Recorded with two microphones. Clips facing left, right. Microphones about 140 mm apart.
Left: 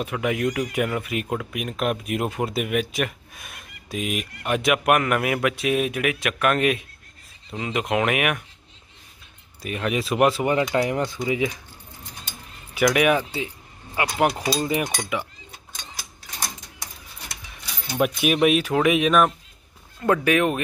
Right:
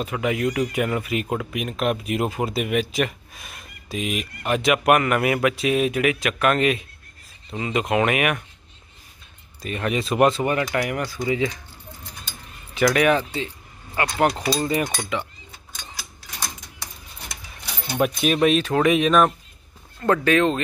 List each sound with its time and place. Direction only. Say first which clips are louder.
0.0 s speech: right 1 dB; centre (ahead or behind)
9.6 s speech: even; 5° left (ahead or behind)
10.4 s speech: left 2 dB; 20° left (ahead or behind)
12.7 s speech: right 1 dB; 10° left (ahead or behind)
17.9 s speech: even; 5° left (ahead or behind)